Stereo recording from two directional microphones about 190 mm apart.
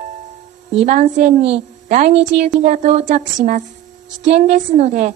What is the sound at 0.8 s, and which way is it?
A woman's voice, 40° right (ahead or behind).